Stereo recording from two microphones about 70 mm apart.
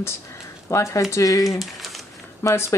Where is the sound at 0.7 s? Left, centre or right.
Left.